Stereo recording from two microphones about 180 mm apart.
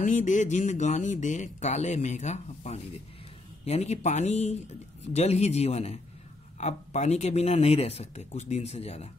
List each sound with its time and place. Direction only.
0.0 s speech: 45° left (ahead or behind)